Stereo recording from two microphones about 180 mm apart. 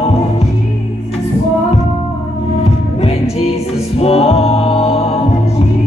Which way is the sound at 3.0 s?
35° left (ahead or behind).